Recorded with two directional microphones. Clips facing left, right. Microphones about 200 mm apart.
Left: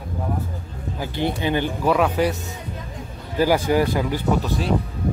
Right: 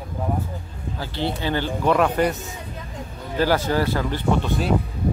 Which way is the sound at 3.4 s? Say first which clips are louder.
Left 2 dB; 15° left (ahead or behind).